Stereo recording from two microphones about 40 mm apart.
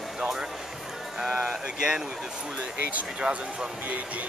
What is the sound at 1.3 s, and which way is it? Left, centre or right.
Speech, right.